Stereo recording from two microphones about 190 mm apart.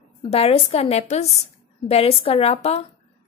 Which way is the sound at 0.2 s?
30° left (ahead or behind).